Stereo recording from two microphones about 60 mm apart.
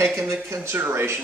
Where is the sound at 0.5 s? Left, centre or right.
Right.